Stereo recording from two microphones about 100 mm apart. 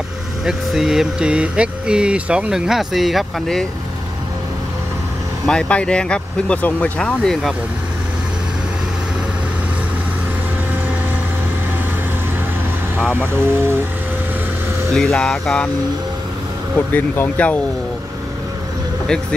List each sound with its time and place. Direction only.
0.5 s speech: 5° right (ahead or behind)
5.5 s speech: 10° left (ahead or behind)
13.3 s speech: 25° right (ahead or behind)
15.1 s speech: 5° left (ahead or behind)
16.7 s speech: 20° left (ahead or behind)